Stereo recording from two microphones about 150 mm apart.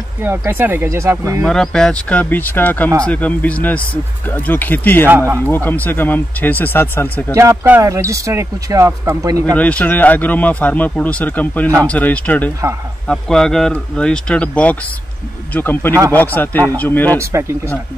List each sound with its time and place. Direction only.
0.2 s speech: 15° right (ahead or behind)
1.4 s speech: 5° left (ahead or behind)
5.0 s speech: 15° right (ahead or behind)
5.5 s speech: 15° left (ahead or behind)
7.3 s speech: 15° right (ahead or behind)
9.6 s speech: 10° left (ahead or behind)
15.9 s speech: 20° right (ahead or behind)
16.7 s speech: 10° left (ahead or behind)
17.2 s speech: 20° right (ahead or behind)